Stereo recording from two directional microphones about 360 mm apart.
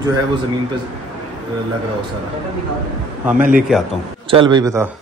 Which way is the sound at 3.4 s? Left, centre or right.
Right.